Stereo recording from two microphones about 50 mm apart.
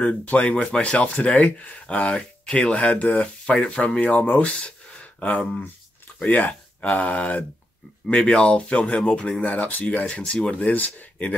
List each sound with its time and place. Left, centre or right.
0.0 s speech: left